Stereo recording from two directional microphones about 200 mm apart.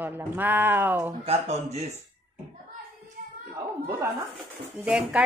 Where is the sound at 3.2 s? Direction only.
45° right (ahead or behind).